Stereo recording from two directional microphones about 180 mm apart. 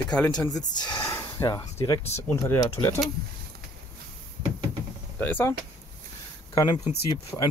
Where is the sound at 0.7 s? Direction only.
25° left (ahead or behind).